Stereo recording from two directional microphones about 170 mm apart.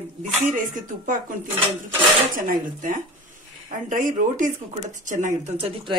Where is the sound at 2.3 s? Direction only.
50° right (ahead or behind).